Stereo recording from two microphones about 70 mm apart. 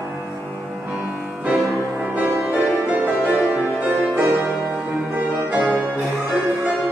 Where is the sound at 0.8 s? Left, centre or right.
Right.